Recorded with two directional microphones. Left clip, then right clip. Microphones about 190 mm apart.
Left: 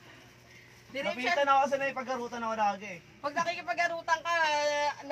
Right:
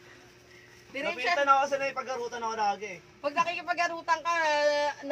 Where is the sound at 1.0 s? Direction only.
35° right (ahead or behind).